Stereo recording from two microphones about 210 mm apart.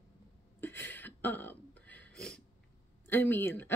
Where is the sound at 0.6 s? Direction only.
10° left (ahead or behind).